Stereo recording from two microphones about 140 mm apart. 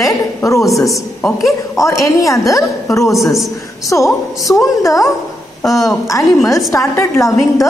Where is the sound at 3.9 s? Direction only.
25° left (ahead or behind).